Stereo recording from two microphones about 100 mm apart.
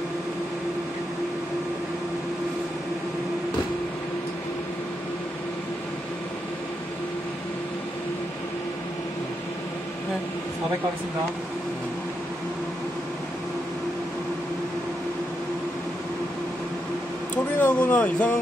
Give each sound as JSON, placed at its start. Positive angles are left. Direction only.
{"t": 17.6, "sound": "speech", "side_deg": 20}